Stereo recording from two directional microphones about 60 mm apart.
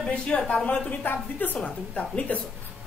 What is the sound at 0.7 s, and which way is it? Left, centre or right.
Speech, left.